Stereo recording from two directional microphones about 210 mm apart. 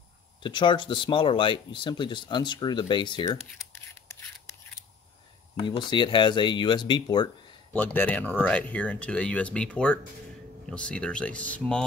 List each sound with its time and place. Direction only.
0.4 s speech: 20° left (ahead or behind)
5.6 s speech: 20° left (ahead or behind)
7.7 s speech: 10° left (ahead or behind)